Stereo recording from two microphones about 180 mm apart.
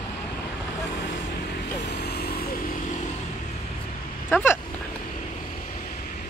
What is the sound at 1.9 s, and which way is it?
Vehicle, 65° left (ahead or behind).